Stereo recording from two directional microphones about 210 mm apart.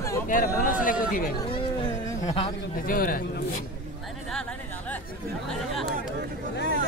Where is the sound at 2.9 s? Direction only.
45° left (ahead or behind).